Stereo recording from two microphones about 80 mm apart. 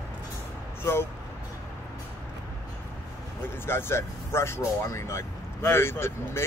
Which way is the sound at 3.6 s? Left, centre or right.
Left.